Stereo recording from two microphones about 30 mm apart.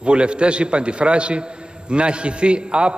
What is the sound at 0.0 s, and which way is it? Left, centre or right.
A man's voice, right.